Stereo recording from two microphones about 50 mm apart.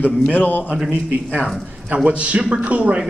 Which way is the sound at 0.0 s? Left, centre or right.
Left.